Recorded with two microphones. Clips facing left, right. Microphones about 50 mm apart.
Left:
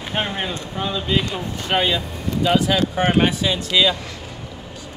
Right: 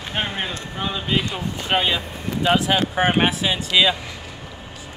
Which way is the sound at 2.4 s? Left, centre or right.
Right.